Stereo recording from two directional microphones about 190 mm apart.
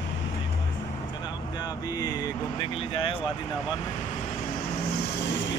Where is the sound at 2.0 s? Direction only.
20° left (ahead or behind).